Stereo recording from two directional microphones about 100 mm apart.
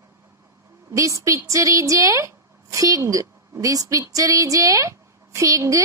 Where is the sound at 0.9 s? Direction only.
30° right (ahead or behind).